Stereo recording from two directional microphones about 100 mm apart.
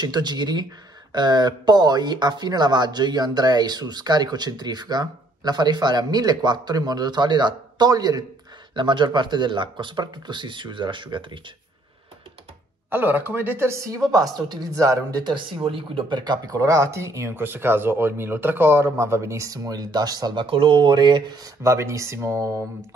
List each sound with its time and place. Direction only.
0.0 s speech: 45° right (ahead or behind)
8.7 s speech: 50° right (ahead or behind)
12.9 s a woman's voice: 20° right (ahead or behind); by 15.3 s 35° right (ahead or behind)
15.3 s speech: 60° right (ahead or behind); by 20.4 s 40° right (ahead or behind)
20.4 s speech: 65° right (ahead or behind); by 21.5 s 45° right (ahead or behind)
21.6 s speech: 30° right (ahead or behind)